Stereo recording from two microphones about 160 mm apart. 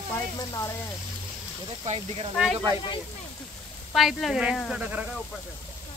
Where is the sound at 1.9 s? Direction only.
35° right (ahead or behind).